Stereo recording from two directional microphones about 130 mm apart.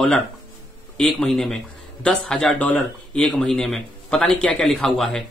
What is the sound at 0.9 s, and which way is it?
A man's voice, 5° left (ahead or behind).